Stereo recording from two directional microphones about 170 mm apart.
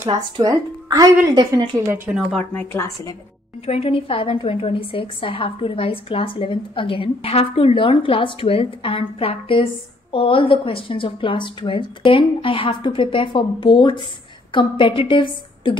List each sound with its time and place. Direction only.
0.1 s speech: 20° right (ahead or behind)
2.1 s a woman's voice: 5° left (ahead or behind)
3.6 s a woman's voice: 35° left (ahead or behind)